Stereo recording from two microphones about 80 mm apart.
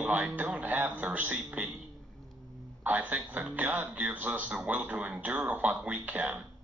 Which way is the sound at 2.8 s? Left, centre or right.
Centre.